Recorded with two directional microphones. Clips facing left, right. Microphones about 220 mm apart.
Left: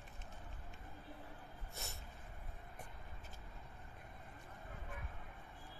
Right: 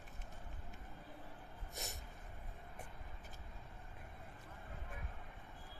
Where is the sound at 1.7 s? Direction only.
15° right (ahead or behind).